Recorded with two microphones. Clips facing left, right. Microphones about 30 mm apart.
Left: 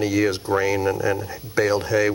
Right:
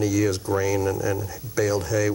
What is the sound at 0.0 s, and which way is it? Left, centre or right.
Speech, left.